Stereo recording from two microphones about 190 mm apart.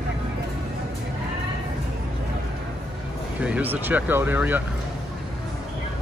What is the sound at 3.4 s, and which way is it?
Speech, 10° right (ahead or behind).